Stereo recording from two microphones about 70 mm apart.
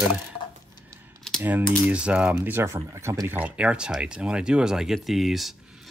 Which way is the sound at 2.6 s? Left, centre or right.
Right.